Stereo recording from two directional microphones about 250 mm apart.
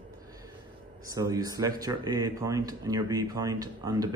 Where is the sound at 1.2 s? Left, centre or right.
Centre.